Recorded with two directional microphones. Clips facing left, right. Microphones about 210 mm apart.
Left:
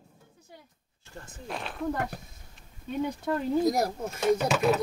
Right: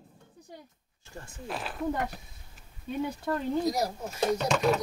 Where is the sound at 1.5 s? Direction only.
Centre (ahead or behind).